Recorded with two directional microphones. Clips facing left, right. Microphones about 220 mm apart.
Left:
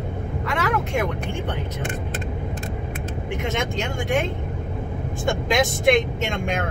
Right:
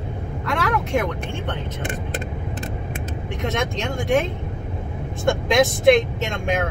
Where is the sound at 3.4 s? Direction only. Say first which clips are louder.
Right 3 dB; centre (ahead or behind).